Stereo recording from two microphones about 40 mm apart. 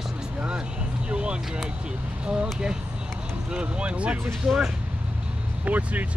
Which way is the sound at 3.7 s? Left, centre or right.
Right.